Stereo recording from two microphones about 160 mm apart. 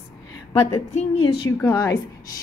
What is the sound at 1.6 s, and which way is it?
Speech, 20° left (ahead or behind).